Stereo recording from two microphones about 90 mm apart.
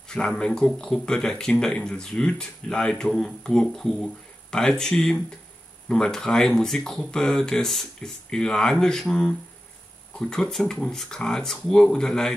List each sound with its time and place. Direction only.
0.1 s speech: 10° left (ahead or behind)